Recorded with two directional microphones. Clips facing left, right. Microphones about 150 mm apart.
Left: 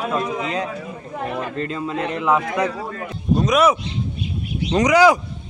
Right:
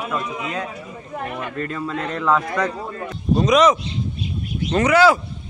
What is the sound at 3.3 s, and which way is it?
Speech, centre (ahead or behind).